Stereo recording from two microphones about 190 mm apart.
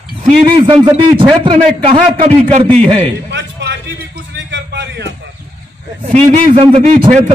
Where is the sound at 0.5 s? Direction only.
25° right (ahead or behind).